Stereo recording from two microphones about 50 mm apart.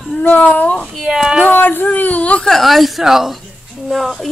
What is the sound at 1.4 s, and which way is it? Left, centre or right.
Speech, left.